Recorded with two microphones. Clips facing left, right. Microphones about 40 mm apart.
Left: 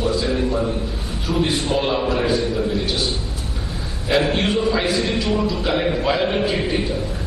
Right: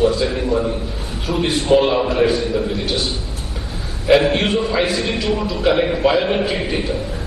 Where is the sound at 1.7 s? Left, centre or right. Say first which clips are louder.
Right 8 dB; centre.